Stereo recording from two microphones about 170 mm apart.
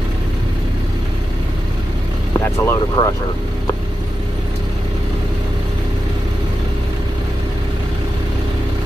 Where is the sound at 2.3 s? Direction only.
15° left (ahead or behind).